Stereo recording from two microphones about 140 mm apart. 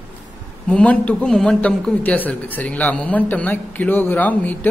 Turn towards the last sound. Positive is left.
turn(degrees=10)  # may be behind; listen again after turning